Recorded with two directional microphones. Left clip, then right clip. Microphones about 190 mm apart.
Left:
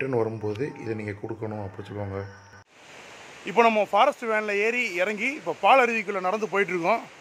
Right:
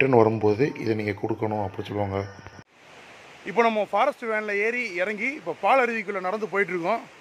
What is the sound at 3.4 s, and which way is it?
Speech, 5° left (ahead or behind).